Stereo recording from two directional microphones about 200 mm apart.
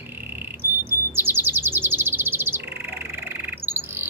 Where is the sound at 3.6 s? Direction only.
10° right (ahead or behind).